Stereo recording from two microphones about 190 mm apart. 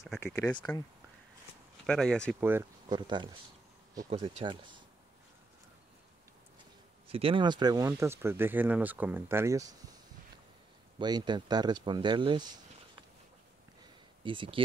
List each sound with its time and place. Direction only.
0.2 s speech: 10° left (ahead or behind)
1.9 s speech: 5° left (ahead or behind)
2.9 s speech: 25° right (ahead or behind)
7.1 s speech: 30° right (ahead or behind)
11.0 s speech: 20° right (ahead or behind)
14.2 s speech: 25° right (ahead or behind)